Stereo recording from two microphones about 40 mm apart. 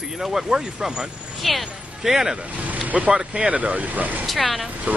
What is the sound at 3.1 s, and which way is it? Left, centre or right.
Speech, right.